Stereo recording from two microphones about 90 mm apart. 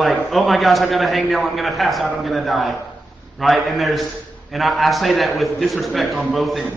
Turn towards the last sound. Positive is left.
turn(degrees=0)  # may be behind; listen again after turning